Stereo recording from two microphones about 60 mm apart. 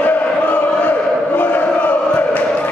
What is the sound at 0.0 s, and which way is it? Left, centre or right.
Chant, left.